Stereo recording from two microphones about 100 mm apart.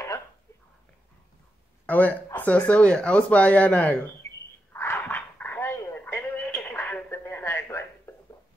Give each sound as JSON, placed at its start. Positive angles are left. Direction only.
{"t": 1.9, "sound": "speech", "side_deg": 15}
{"t": 4.7, "sound": "dog", "side_deg": 20}